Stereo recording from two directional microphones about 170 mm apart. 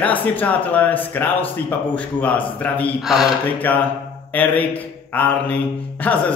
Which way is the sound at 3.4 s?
10° left (ahead or behind).